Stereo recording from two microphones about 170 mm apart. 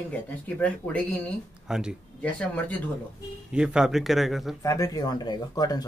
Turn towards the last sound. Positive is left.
turn(degrees=25)  # may be behind; listen again after turning